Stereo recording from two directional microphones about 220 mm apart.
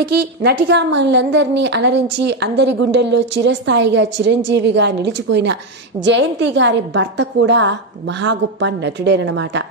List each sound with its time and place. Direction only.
0.4 s a woman's voice: 50° right (ahead or behind)